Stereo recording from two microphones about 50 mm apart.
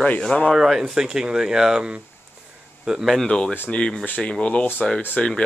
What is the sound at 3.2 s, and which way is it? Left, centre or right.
Speech, centre.